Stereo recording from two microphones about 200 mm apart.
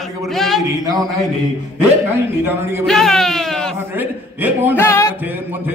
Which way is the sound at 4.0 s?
10° right (ahead or behind).